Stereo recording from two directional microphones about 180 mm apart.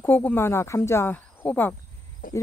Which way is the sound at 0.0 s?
10° left (ahead or behind).